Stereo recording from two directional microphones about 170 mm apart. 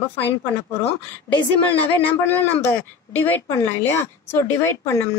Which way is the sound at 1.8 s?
10° left (ahead or behind).